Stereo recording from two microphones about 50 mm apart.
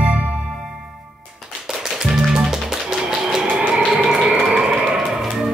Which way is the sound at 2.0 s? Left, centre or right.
Centre.